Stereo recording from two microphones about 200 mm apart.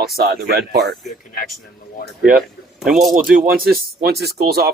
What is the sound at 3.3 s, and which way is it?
A man's voice, 45° right (ahead or behind).